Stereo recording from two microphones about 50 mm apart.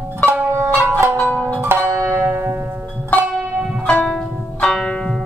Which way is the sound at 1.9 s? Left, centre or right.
Right.